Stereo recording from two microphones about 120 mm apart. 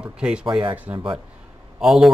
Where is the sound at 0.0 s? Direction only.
10° right (ahead or behind).